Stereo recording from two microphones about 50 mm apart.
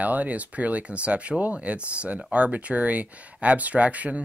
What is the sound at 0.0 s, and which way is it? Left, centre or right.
Speech, right.